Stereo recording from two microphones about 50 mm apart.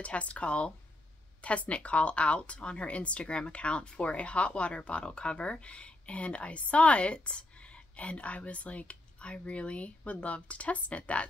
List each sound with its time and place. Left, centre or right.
0.0 s speech: left